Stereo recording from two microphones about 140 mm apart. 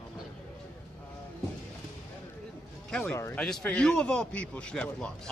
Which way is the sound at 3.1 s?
20° left (ahead or behind).